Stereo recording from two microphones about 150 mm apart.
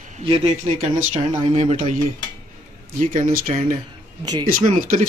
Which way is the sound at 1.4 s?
45° right (ahead or behind).